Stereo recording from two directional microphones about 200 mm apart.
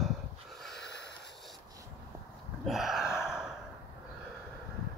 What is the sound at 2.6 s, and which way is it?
Gasp, centre (ahead or behind).